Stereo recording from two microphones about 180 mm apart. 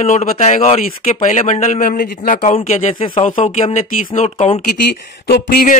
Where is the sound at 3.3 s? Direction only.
45° left (ahead or behind).